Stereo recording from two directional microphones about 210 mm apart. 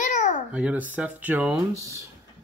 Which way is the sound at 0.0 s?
35° left (ahead or behind).